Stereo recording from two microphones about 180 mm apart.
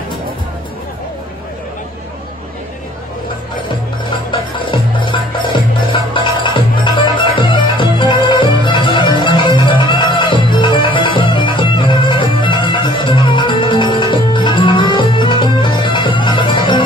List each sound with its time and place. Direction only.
4.3 s music: 25° left (ahead or behind)